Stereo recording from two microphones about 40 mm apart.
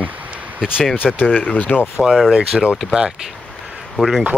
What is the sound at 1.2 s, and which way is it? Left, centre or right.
Speech, left.